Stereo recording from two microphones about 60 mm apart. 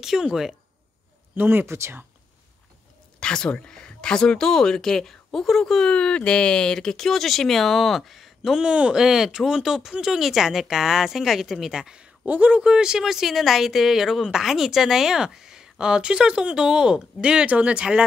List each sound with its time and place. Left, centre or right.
0.0 s speech: centre
1.3 s speech: right
3.2 s speech: centre
8.6 s speech: centre